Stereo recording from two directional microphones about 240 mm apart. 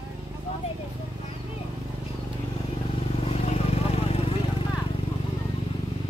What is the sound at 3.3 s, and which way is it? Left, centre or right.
Vehicle, left.